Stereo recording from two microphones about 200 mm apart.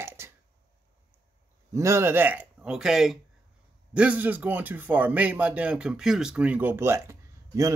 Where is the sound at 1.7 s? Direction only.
15° right (ahead or behind).